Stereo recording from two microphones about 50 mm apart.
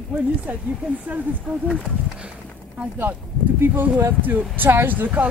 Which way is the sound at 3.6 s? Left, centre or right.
Right.